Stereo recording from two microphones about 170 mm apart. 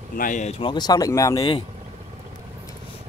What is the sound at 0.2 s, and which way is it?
Speech, 45° left (ahead or behind).